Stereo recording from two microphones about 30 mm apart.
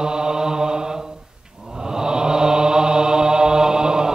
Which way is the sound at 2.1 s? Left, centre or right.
Right.